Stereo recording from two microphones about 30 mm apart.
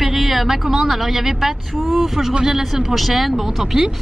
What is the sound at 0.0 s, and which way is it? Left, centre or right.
A woman's voice, centre.